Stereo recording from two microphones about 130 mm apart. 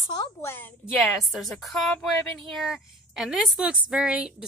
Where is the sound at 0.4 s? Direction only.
15° left (ahead or behind).